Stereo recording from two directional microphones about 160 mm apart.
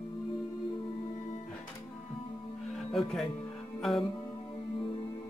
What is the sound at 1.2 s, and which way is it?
Music, 45° left (ahead or behind).